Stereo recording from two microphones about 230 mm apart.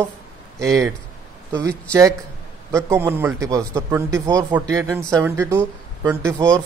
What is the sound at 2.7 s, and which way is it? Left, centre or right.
Speech, centre.